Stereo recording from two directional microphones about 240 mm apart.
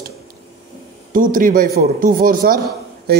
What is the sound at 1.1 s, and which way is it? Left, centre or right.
Speech, right.